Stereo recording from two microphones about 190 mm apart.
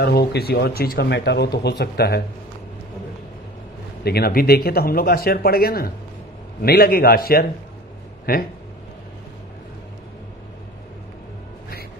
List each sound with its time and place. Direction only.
0.0 s speech: 60° left (ahead or behind)
4.0 s speech: 55° left (ahead or behind)